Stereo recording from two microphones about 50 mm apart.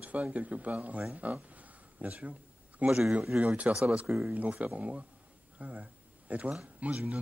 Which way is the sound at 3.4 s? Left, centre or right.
Right.